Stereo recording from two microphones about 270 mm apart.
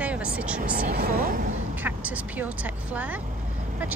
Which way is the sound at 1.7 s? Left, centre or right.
Centre.